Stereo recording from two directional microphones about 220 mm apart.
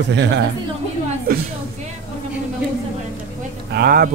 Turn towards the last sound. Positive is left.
turn(degrees=-45)  # may be behind; listen again after turning